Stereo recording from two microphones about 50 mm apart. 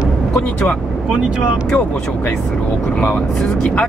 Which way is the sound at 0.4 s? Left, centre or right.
Left.